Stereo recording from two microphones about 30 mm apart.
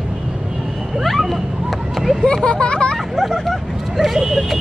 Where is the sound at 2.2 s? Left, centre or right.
Left.